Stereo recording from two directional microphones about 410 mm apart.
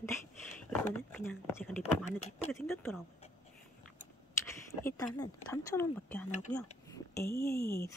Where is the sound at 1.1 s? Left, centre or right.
Centre.